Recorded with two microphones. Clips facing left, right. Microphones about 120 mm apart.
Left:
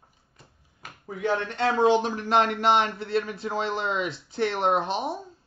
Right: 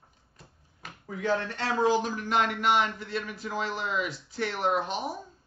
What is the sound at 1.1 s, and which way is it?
Speech, 20° left (ahead or behind).